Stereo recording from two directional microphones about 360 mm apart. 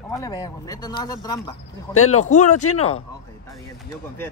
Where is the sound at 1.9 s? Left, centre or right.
Left.